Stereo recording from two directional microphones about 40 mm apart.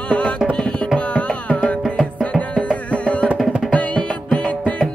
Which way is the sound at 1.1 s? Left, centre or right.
Left.